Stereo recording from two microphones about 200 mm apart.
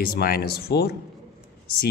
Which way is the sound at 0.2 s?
50° left (ahead or behind).